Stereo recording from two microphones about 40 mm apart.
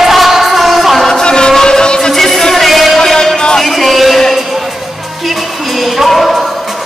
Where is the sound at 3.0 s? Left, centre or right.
Centre.